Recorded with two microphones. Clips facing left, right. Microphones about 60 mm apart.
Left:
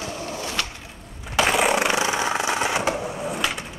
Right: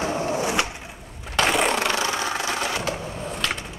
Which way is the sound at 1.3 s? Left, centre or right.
Centre.